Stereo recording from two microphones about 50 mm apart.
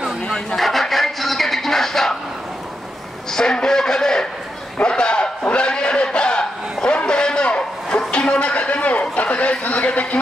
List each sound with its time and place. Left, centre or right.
0.6 s music: centre
3.3 s a man's voice: centre
5.4 s sheep: left
8.1 s a sound: left